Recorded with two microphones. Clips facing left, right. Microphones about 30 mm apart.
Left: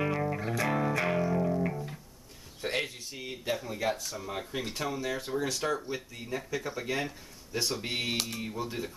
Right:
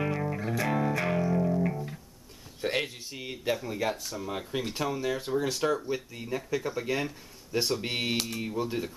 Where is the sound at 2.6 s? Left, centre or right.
Centre.